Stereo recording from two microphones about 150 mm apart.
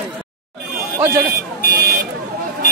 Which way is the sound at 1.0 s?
15° right (ahead or behind).